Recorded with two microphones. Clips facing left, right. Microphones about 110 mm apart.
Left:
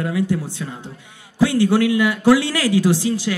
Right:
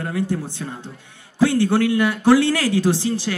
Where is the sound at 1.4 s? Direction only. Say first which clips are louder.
Left 1 dB; 15° left (ahead or behind).